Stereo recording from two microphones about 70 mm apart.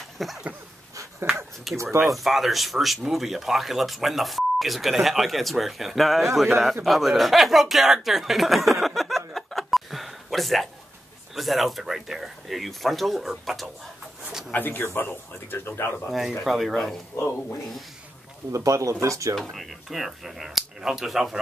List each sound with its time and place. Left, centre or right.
0.2 s speech: centre
1.8 s speech: right
2.0 s speech: centre
14.5 s speech: left
16.1 s speech: centre
18.5 s speech: right
19.5 s speech: centre